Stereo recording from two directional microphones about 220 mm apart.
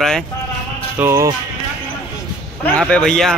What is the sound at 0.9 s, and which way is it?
Speech, 15° right (ahead or behind).